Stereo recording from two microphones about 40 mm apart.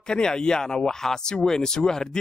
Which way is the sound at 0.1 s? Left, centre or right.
Centre.